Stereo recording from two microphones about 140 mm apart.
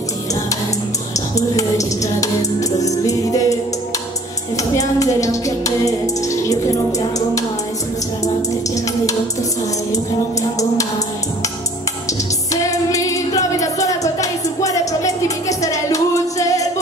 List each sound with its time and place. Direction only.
1.1 s speech: 25° left (ahead or behind)
4.6 s speech: 25° left (ahead or behind)
12.9 s music: 25° left (ahead or behind)